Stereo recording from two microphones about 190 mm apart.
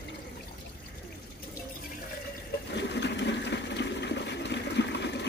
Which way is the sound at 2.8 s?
65° left (ahead or behind).